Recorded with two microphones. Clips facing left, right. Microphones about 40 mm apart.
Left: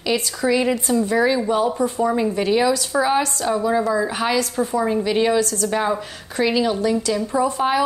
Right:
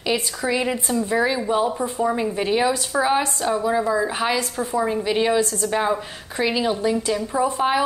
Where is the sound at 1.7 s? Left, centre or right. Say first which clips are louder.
Left 3 dB; right.